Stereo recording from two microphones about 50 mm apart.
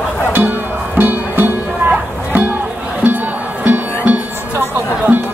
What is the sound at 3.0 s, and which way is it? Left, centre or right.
Crowd, right.